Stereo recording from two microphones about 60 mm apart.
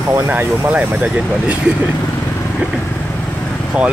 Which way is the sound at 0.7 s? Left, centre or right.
Centre.